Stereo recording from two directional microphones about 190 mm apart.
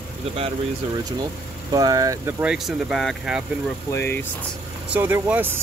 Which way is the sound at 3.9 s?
10° left (ahead or behind).